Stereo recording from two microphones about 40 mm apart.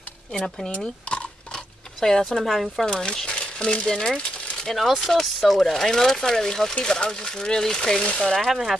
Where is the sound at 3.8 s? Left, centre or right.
Centre.